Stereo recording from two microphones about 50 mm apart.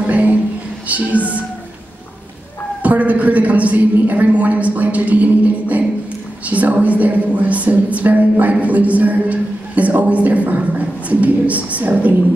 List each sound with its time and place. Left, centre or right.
0.0 s a sound: right
0.8 s speech: right
2.8 s a woman's voice: right